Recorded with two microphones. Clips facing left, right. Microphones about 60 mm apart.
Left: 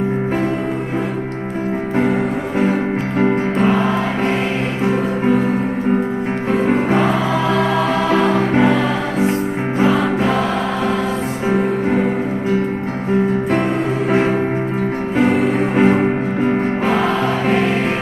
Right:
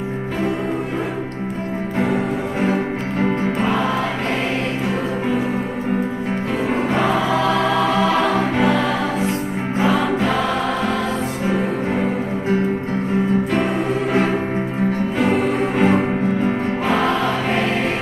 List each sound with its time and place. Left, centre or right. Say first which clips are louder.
3.2 s music: left 4 dB; left
3.6 s music: left 5 dB; centre
4.8 s music: left 5 dB; left
7.0 s choir: left 1 dB; centre
9.8 s music: left 1 dB; centre
15.7 s music: left 3 dB; left
16.8 s music: right 1 dB; centre